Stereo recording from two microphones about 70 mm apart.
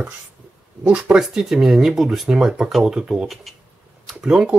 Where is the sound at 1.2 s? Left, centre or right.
Centre.